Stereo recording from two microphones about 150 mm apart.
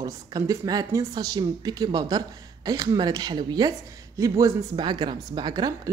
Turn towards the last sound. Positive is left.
turn(degrees=-25)  # may be behind; listen again after turning